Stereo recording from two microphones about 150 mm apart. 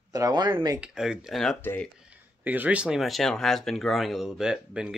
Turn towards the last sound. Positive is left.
turn(degrees=-5)  # may be behind; listen again after turning